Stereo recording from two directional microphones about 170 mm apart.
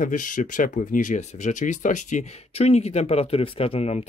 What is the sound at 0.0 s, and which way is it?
Speech, 50° left (ahead or behind).